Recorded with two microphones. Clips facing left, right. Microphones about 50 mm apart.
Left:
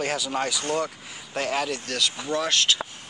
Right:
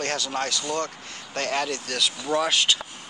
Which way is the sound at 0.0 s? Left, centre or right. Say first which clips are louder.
Left 1 dB; centre.